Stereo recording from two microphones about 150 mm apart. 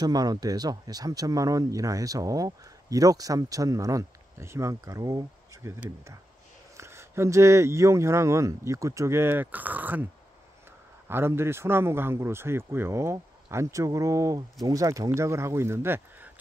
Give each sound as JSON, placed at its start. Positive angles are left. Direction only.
{"t": 0.0, "sound": "speech", "side_deg": -25}
{"t": 11.1, "sound": "speech", "side_deg": -15}